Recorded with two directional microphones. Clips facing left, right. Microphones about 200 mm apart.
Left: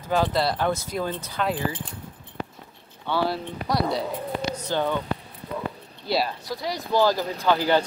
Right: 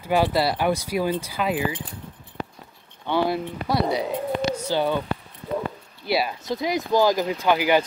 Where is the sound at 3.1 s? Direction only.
20° right (ahead or behind).